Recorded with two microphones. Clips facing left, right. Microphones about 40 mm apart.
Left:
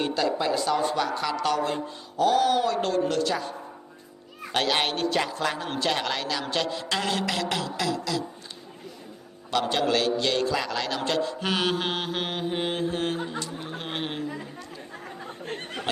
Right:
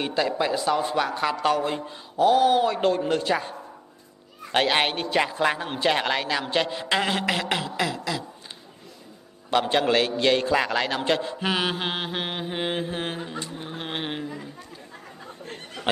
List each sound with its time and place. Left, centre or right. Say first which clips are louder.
0.0 s speech: right 1 dB; centre
0.4 s mantra: right 1 dB; centre
1.0 s a man's voice: right 3 dB; right
9.5 s a man's voice: right 3 dB; right
11.4 s mantra: right 2 dB; centre
13.7 s speech: right 1 dB; centre
15.4 s a sound: left 5 dB; left